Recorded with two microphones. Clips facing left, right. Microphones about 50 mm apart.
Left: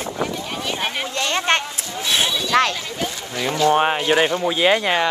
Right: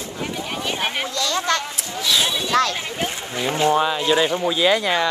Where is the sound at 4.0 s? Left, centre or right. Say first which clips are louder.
Left 1 dB; left.